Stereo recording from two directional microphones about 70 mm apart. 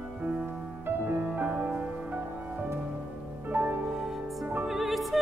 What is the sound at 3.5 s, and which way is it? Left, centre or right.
Music, right.